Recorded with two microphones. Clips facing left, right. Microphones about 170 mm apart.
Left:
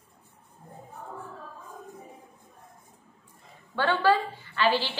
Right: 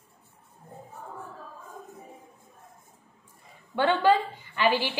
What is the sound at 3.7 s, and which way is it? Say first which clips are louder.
A woman's voice: right 2 dB; 20° right (ahead or behind).